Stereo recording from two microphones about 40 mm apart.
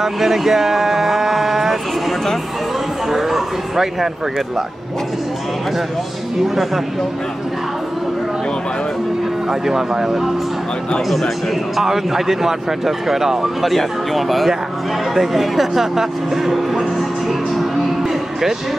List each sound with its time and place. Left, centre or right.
0.0 s speech: centre
6.4 s speech: centre
9.5 s speech: centre
11.1 s speech: centre
17.3 s music: centre